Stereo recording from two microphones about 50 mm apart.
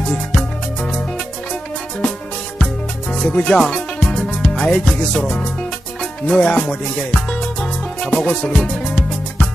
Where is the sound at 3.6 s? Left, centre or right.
Centre.